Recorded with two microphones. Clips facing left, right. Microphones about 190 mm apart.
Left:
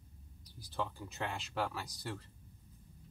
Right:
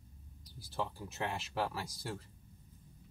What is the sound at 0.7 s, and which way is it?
Speech, 5° right (ahead or behind).